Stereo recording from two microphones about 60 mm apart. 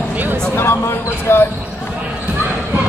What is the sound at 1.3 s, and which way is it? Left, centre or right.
Speech, left.